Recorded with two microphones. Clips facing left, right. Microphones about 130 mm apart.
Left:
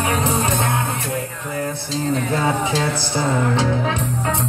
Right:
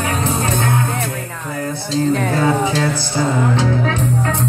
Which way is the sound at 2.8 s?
25° left (ahead or behind).